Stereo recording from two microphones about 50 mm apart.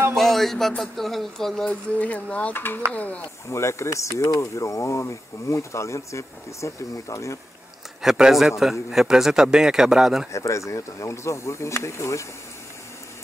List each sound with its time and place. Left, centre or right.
0.1 s speech: centre
2.0 s speech: left
2.5 s speech: left
2.9 s speech: left
3.4 s speech: left
8.0 s a man's voice: centre
10.3 s speech: left